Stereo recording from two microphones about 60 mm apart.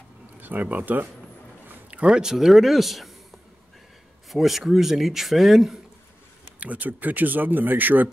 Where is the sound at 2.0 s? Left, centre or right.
Centre.